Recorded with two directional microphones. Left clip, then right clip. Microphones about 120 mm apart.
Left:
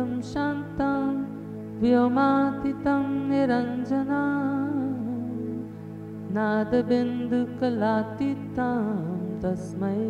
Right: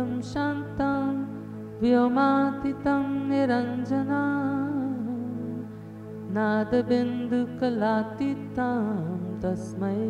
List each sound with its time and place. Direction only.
0.0 s music: 25° right (ahead or behind)
6.3 s music: 25° right (ahead or behind)